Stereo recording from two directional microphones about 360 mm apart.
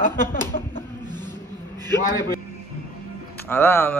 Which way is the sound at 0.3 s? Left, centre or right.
Left.